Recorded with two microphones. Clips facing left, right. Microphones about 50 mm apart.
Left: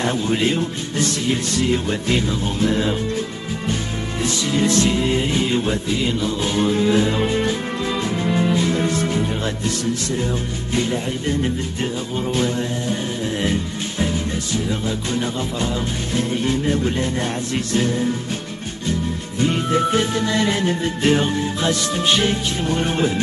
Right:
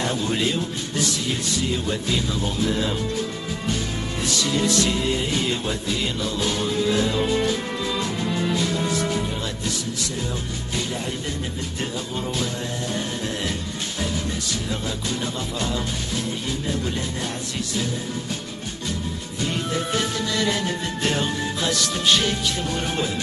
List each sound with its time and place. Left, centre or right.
0.0 s music: left
4.2 s music: left
10.2 s music: left
16.2 s music: left
19.4 s music: left